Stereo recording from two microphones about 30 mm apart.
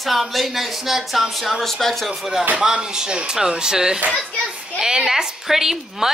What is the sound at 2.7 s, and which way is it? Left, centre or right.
A woman's voice, right.